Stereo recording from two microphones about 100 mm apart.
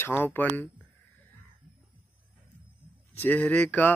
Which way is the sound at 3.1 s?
20° left (ahead or behind).